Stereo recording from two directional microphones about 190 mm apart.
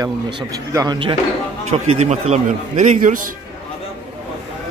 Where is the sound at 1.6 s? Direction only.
35° right (ahead or behind).